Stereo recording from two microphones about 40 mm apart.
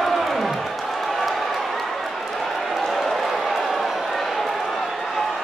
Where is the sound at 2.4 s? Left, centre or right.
Centre.